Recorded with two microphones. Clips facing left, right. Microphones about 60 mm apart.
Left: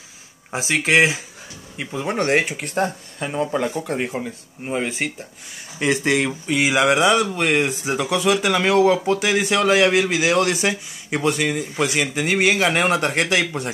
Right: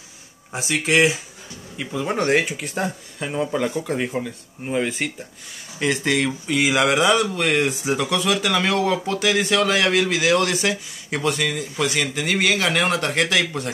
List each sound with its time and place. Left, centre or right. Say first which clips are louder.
0.5 s speech: left 2 dB; left
2.0 s speech: left 1 dB; centre
3.9 s speech: even; left
4.6 s speech: right 1 dB; centre